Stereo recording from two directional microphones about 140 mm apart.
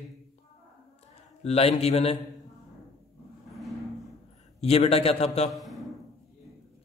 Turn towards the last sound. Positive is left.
turn(degrees=0)  # may be behind; listen again after turning